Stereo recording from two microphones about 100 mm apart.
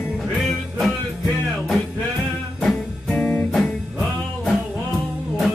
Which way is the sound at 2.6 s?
10° left (ahead or behind).